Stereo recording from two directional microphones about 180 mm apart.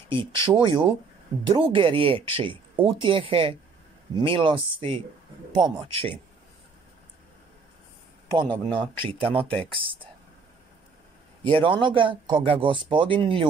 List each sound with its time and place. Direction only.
0.1 s speech: 30° right (ahead or behind)
8.5 s speech: 10° left (ahead or behind)
9.3 s speech: 30° right (ahead or behind)
11.4 s speech: 30° right (ahead or behind)